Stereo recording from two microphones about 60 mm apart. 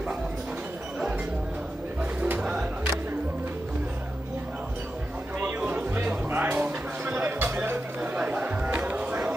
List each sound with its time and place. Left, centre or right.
5.4 s music: right
6.3 s a sound: right
6.6 s music: right
7.6 s chatter: right
8.1 s chatter: right